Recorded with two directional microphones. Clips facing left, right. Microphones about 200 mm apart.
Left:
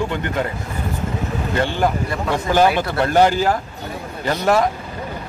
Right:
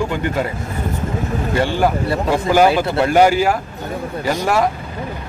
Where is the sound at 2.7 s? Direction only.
25° right (ahead or behind).